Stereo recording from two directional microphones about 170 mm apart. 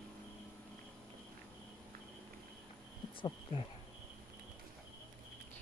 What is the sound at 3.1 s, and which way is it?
Speech, 30° left (ahead or behind).